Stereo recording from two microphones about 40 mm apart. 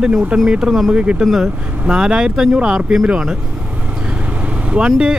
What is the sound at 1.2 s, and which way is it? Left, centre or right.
Speech, centre.